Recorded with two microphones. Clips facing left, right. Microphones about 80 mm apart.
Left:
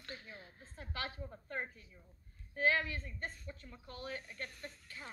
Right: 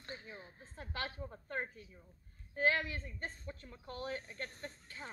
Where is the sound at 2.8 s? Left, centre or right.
Right.